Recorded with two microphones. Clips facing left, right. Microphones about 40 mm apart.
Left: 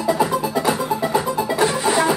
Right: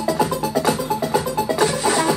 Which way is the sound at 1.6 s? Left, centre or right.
Centre.